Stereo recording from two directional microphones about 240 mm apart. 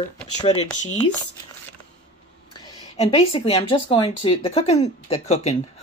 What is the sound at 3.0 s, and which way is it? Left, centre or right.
Speech, left.